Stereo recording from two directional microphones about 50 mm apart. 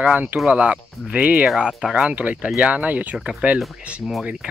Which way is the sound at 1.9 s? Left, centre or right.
Right.